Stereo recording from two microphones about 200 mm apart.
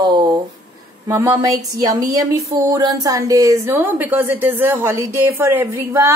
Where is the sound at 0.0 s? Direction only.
20° right (ahead or behind).